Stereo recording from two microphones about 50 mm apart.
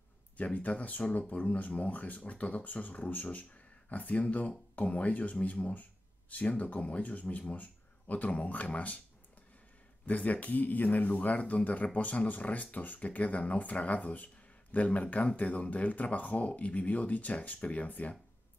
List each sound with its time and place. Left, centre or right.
0.4 s speech: left
10.0 s speech: left